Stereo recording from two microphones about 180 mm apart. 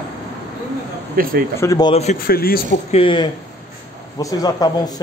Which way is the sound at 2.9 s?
30° left (ahead or behind).